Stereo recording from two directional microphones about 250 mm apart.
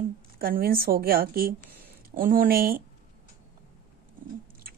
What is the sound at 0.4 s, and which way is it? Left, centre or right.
Speech, right.